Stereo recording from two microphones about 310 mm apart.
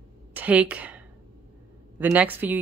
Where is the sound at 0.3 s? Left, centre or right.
Centre.